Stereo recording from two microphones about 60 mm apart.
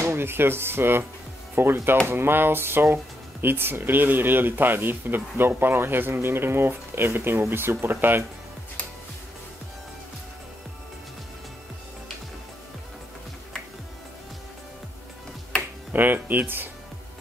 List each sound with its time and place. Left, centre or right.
0.0 s speech: right
15.9 s speech: right